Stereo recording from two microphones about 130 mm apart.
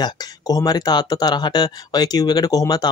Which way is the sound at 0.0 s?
30° left (ahead or behind).